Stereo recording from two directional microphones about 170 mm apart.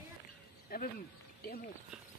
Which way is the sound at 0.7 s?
60° left (ahead or behind).